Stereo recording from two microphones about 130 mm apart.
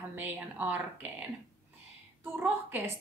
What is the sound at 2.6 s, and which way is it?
Speech, 15° right (ahead or behind).